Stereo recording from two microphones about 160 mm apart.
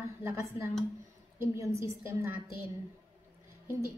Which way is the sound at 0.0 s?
15° right (ahead or behind).